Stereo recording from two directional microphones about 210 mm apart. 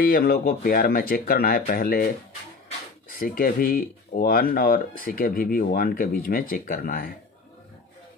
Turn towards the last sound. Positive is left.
turn(degrees=45)  # may be behind; listen again after turning